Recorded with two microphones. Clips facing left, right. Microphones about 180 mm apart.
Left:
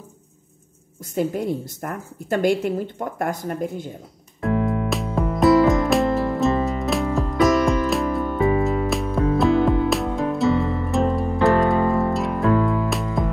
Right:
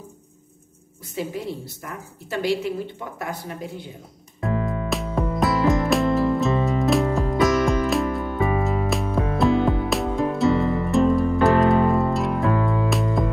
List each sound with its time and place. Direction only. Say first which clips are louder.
1.1 s a woman's voice: left 6 dB; 50° left (ahead or behind)
4.4 s music: left 4 dB; centre (ahead or behind)